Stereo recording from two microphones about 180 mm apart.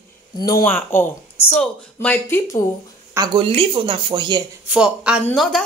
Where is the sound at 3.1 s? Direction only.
25° right (ahead or behind).